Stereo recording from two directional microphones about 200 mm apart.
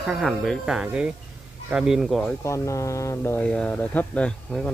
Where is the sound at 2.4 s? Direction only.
15° left (ahead or behind).